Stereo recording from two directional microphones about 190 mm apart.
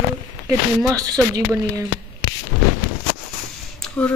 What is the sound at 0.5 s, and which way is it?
Speech, 20° right (ahead or behind).